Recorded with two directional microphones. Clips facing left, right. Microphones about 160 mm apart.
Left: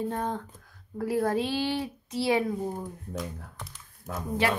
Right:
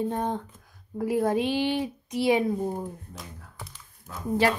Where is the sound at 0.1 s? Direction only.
20° right (ahead or behind).